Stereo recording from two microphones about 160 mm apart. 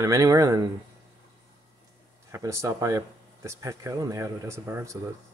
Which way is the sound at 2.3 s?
20° right (ahead or behind).